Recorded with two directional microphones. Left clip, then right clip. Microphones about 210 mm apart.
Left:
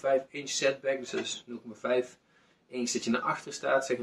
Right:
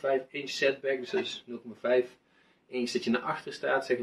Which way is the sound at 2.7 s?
15° left (ahead or behind).